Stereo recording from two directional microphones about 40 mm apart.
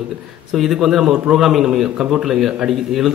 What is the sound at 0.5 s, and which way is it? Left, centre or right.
A man's voice, centre.